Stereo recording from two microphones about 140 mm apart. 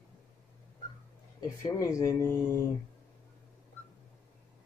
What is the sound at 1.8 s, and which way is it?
Speech, 25° left (ahead or behind).